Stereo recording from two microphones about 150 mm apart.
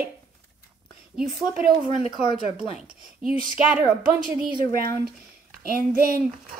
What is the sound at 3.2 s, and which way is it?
Speech, 5° right (ahead or behind).